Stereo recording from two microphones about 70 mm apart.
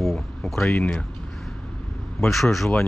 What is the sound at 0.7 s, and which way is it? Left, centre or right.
Speech, left.